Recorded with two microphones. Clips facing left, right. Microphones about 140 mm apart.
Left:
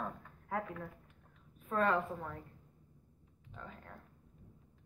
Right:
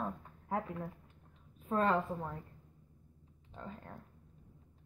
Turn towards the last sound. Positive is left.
turn(degrees=-30)  # may be behind; listen again after turning